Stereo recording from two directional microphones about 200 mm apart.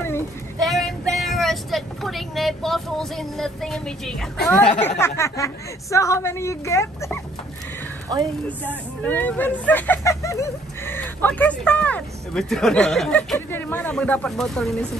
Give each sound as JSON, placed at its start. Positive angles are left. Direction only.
{"t": 0.7, "sound": "speech", "side_deg": 0}
{"t": 8.1, "sound": "speech", "side_deg": -20}
{"t": 9.0, "sound": "speech", "side_deg": 10}